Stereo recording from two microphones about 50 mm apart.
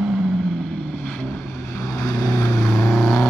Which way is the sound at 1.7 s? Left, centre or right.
Left.